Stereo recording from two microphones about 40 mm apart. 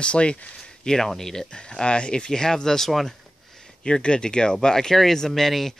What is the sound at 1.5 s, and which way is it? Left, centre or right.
Speech, left.